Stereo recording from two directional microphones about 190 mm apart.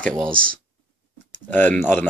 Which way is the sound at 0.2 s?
5° left (ahead or behind).